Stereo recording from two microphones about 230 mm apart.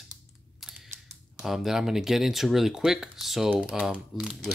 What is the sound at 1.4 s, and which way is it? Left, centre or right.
Speech, centre.